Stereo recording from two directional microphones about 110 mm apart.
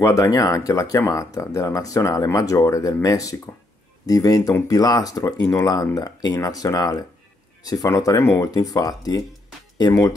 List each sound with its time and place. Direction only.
0.0 s speech: 30° left (ahead or behind)